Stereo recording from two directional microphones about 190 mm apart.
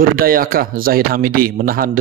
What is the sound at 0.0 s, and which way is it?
A man's voice, 50° right (ahead or behind).